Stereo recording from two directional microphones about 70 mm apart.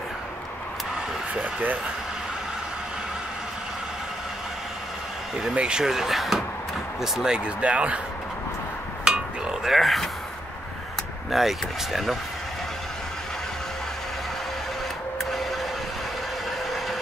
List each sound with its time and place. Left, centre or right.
1.3 s speech: right
5.4 s speech: centre
9.0 s a sound: centre
11.3 s speech: centre
15.1 s printer: centre